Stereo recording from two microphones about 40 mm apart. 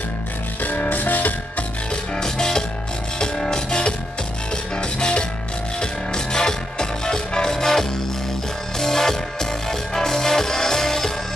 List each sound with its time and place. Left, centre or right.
0.6 s music: left
2.1 s music: centre